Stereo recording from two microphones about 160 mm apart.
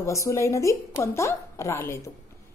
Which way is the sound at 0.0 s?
20° left (ahead or behind).